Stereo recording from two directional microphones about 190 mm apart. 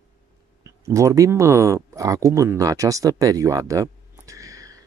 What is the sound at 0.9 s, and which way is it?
Speech, 15° right (ahead or behind).